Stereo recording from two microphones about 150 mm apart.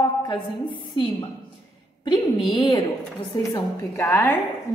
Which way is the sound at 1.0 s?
35° left (ahead or behind).